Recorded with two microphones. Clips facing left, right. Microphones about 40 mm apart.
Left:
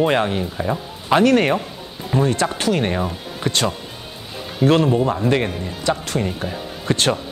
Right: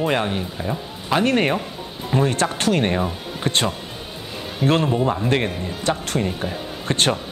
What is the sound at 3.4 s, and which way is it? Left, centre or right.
Speech, right.